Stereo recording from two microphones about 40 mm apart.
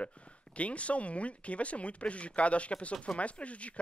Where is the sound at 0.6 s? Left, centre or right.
Left.